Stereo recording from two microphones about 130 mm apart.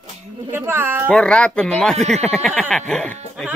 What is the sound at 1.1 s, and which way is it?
Speech, 5° left (ahead or behind).